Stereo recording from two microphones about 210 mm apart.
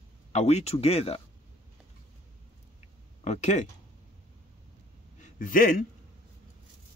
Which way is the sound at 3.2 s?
35° left (ahead or behind).